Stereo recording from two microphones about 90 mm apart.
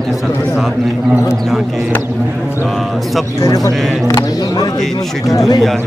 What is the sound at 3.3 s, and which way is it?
Speech, 40° left (ahead or behind).